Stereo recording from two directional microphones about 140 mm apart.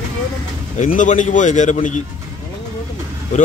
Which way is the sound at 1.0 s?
60° left (ahead or behind).